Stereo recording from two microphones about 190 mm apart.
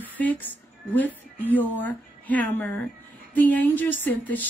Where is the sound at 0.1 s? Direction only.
10° left (ahead or behind).